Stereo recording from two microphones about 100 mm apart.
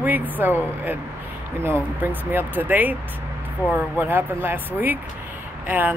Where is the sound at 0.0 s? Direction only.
20° right (ahead or behind).